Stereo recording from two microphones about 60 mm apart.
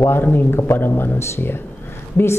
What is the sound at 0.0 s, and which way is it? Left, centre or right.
Speech, left.